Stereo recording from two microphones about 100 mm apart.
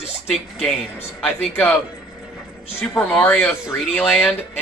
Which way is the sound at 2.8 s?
5° left (ahead or behind).